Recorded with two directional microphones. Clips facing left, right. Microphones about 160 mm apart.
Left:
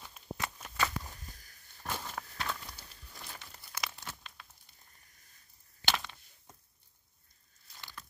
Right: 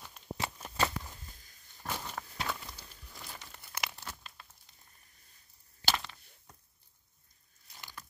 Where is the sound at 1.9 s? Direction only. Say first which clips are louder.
Even; 5° left (ahead or behind).